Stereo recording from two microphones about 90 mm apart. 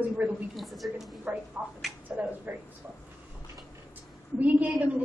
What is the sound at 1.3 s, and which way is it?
Speech, 20° right (ahead or behind).